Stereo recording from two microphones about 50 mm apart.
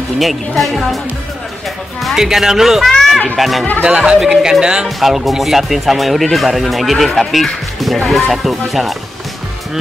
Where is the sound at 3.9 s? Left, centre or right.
Right.